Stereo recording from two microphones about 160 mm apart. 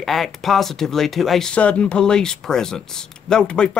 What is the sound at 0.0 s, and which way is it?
Speech, centre (ahead or behind).